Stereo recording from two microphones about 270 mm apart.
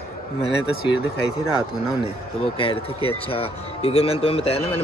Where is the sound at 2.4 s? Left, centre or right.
Centre.